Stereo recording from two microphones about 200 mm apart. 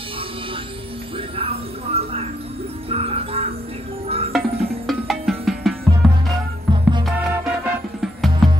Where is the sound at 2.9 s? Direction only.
30° right (ahead or behind).